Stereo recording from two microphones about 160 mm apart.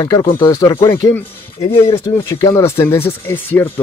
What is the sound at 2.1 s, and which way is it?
Speech, 15° left (ahead or behind).